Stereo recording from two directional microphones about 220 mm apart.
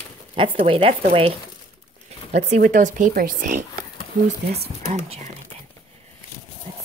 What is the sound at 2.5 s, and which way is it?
Speech, 35° right (ahead or behind).